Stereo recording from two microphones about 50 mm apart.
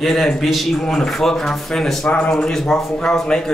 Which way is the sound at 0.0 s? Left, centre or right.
Centre.